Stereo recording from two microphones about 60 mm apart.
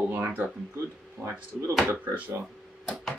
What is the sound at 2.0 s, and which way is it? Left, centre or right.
Speech, right.